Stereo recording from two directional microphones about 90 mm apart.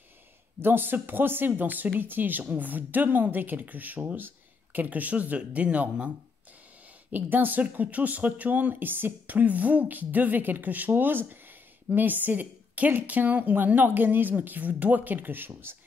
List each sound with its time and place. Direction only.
0.6 s speech: 25° right (ahead or behind)